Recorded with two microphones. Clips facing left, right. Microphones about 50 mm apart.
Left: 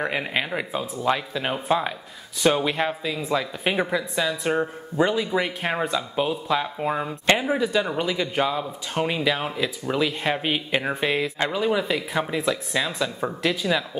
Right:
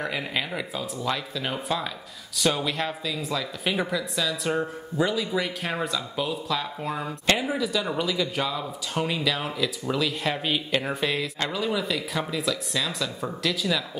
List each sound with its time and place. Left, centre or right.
0.0 s speech: left